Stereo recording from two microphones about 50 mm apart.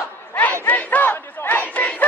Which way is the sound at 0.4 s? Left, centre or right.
Left.